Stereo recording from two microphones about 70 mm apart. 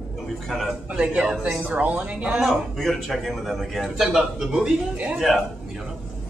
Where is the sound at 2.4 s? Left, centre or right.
Centre.